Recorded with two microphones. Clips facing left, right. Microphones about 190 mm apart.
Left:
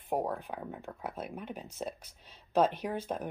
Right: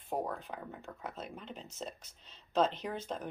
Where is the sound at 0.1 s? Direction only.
35° left (ahead or behind).